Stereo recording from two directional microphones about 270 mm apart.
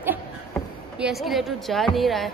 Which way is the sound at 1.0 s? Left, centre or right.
Centre.